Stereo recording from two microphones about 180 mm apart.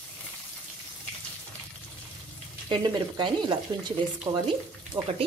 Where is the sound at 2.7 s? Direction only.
25° right (ahead or behind).